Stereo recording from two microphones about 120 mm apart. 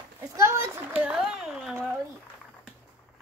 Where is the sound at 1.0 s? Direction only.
5° right (ahead or behind).